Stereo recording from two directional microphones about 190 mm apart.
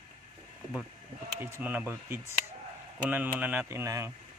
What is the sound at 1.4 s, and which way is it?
Speech, 10° right (ahead or behind).